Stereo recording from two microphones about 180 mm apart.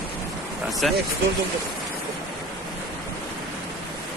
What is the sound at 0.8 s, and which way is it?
Speech, centre (ahead or behind).